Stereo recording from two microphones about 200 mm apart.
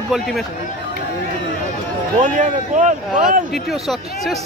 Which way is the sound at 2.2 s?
35° right (ahead or behind).